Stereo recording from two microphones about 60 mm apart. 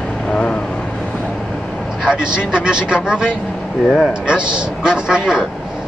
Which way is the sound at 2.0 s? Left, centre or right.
Centre.